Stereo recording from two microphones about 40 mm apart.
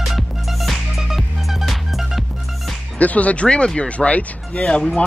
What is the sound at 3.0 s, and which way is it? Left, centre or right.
Speech, left.